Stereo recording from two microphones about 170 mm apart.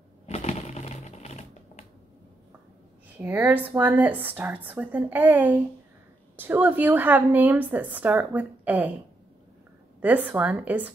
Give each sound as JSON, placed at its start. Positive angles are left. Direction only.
{"t": 0.3, "sound": "typewriter", "side_deg": 40}
{"t": 3.2, "sound": "a woman's voice", "side_deg": -10}
{"t": 10.0, "sound": "a woman's voice", "side_deg": -10}